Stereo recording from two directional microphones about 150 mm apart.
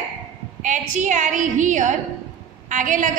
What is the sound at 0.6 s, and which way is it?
A woman's voice, 55° right (ahead or behind).